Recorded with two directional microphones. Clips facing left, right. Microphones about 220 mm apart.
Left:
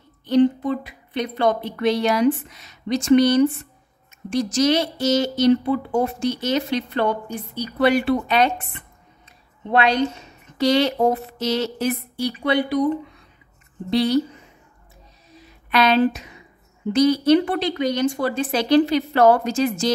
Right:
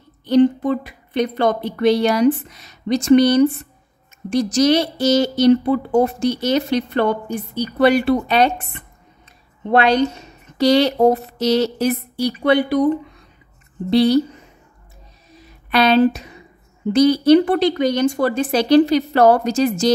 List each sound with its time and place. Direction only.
0.2 s a woman's voice: 40° right (ahead or behind)
9.7 s a woman's voice: 40° right (ahead or behind)
13.8 s a woman's voice: 35° right (ahead or behind)
15.7 s a woman's voice: 35° right (ahead or behind)